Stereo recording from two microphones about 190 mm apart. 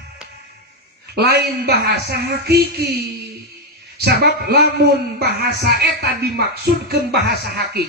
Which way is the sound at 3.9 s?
60° right (ahead or behind).